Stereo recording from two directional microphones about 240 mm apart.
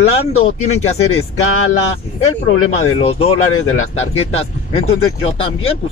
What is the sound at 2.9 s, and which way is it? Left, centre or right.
Speech, left.